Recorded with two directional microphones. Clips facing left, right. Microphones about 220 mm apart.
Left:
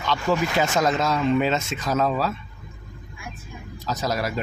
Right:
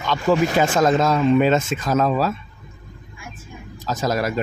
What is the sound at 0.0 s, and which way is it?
Speech, 50° right (ahead or behind).